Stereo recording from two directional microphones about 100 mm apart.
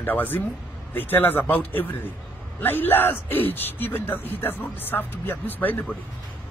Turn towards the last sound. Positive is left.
turn(degrees=20)  # may be behind; listen again after turning